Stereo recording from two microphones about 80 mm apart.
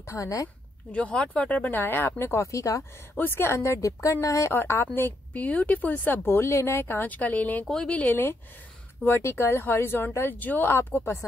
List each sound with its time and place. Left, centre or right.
0.0 s speech: left
0.9 s a woman's voice: centre; by 2.8 s left
3.2 s speech: left
4.5 s a woman's voice: left
7.6 s a woman's voice: centre
7.9 s a woman's voice: left